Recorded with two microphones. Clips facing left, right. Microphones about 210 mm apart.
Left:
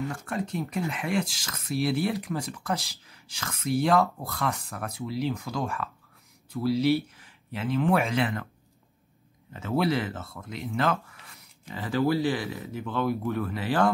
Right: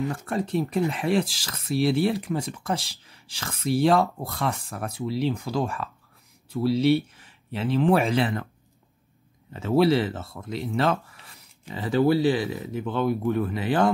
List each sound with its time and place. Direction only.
0.1 s speech: 35° right (ahead or behind)
9.5 s speech: 30° right (ahead or behind)